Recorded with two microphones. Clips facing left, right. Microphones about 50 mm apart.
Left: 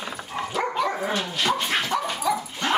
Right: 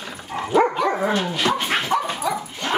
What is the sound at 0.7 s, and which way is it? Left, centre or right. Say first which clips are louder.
Dog: right 3 dB; centre.